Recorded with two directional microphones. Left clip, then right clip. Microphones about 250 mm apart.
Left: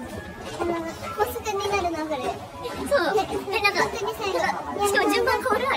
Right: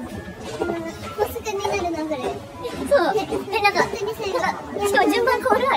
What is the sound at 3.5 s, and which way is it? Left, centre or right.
Children playing, centre.